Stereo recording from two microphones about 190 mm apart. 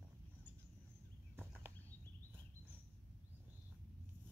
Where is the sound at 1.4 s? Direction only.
5° right (ahead or behind).